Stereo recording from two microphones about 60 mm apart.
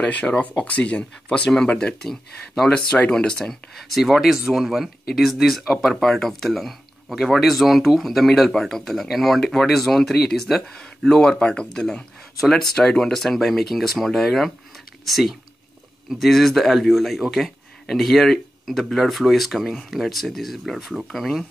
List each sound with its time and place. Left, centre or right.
0.0 s speech: left
2.0 s speech: centre
2.7 s speech: centre
3.9 s speech: centre